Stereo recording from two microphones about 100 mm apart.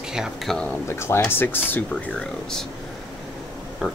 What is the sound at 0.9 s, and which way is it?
Speech, 25° left (ahead or behind).